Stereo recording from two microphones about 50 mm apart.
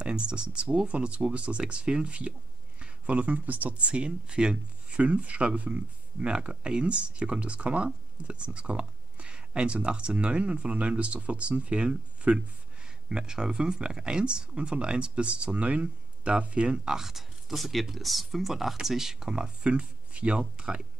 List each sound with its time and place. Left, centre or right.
0.0 s speech: right
3.7 s speech: right
16.9 s speech: centre